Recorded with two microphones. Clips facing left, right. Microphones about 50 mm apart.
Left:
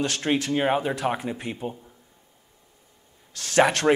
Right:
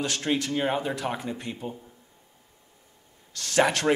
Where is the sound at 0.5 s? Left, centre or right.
Left.